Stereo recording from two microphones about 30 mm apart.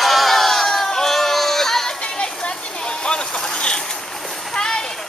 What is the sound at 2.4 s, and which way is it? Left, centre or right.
Boat, left.